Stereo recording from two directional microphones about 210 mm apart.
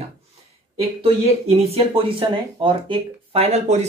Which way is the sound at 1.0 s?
30° right (ahead or behind).